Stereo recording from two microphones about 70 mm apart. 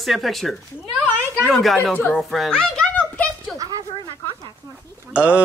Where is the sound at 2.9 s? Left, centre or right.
Centre.